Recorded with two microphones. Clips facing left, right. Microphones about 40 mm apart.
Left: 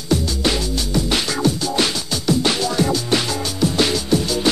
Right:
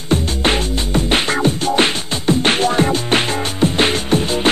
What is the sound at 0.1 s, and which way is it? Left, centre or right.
Music, right.